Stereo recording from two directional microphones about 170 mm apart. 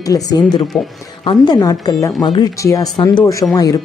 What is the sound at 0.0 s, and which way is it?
Speech, 20° left (ahead or behind).